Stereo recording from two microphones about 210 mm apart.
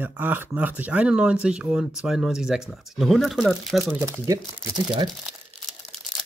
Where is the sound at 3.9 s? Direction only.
15° right (ahead or behind).